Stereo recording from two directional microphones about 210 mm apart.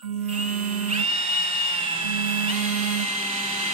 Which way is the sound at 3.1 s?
35° right (ahead or behind).